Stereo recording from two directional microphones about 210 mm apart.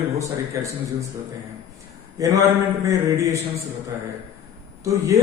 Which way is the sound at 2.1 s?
15° right (ahead or behind).